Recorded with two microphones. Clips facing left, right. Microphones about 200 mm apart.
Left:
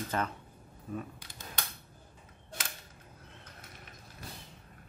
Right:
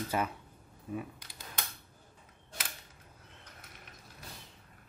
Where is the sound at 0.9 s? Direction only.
5° right (ahead or behind).